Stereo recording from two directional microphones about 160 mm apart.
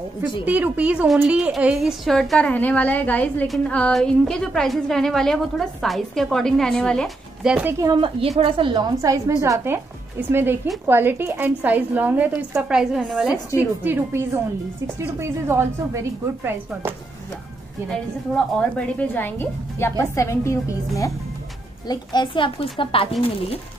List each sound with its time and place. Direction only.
0.5 s a woman's voice: 10° right (ahead or behind)
7.4 s a woman's voice: 5° right (ahead or behind)
7.8 s a woman's voice: 30° right (ahead or behind)
17.8 s a woman's voice: centre (ahead or behind); by 23.6 s 35° left (ahead or behind)